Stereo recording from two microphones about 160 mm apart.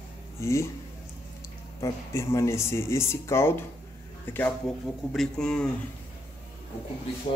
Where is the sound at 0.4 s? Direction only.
20° left (ahead or behind).